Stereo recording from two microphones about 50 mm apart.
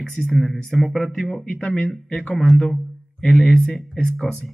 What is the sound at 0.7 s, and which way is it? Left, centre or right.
Speech, centre.